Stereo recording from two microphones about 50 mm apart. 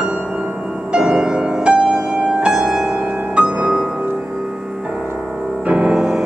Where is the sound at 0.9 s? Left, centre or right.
Right.